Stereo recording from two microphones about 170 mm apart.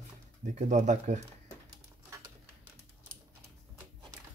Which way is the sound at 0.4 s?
45° right (ahead or behind).